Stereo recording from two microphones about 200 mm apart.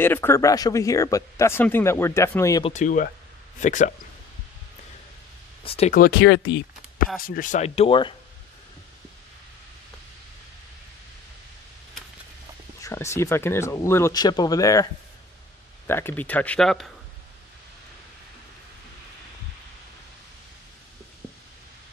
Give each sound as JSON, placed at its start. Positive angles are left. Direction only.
{"t": 0.0, "sound": "speech", "side_deg": 10}
{"t": 2.6, "sound": "speech", "side_deg": 35}
{"t": 5.6, "sound": "speech", "side_deg": 30}
{"t": 5.9, "sound": "speech", "side_deg": 50}
{"t": 6.2, "sound": "speech", "side_deg": 75}
{"t": 7.2, "sound": "speech", "side_deg": 45}
{"t": 12.8, "sound": "speech", "side_deg": 15}
{"t": 15.9, "sound": "speech", "side_deg": 10}